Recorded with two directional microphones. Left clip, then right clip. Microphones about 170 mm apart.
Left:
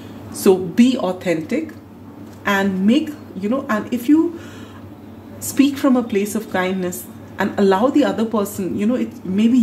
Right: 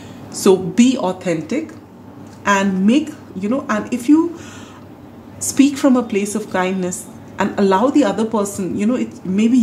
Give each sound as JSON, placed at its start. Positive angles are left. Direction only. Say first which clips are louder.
{"t": 0.3, "sound": "a woman's voice", "louder": "right 1 dB", "side_deg": -20}
{"t": 2.4, "sound": "a woman's voice", "louder": "right 2 dB", "side_deg": -15}
{"t": 5.5, "sound": "a woman's voice", "louder": "right 2 dB", "side_deg": -20}